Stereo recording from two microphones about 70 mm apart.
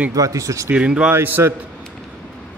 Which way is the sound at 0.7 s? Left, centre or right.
Centre.